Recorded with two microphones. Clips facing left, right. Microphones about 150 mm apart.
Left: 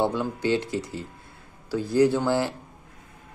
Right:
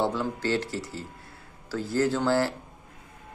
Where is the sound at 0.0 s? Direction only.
15° left (ahead or behind).